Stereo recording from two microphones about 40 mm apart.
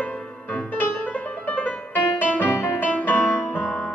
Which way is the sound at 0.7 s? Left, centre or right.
Left.